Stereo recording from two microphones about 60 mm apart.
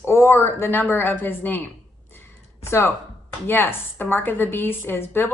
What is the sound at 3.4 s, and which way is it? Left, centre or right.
Speech, left.